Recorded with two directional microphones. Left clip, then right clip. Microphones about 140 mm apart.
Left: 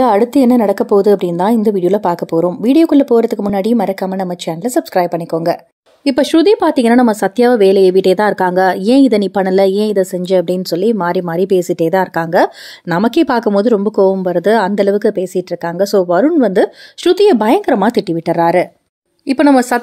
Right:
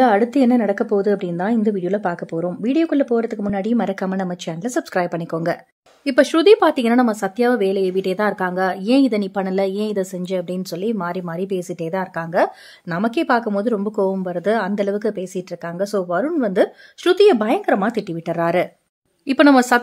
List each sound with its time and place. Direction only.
0.0 s a woman's voice: 25° left (ahead or behind)
6.0 s a woman's voice: 35° left (ahead or behind); by 19.8 s 15° left (ahead or behind)